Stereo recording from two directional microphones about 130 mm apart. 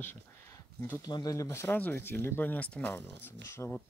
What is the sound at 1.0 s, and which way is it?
Speech, 30° left (ahead or behind).